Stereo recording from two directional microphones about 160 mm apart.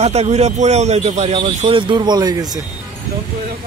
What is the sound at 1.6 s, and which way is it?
Speech, 30° right (ahead or behind).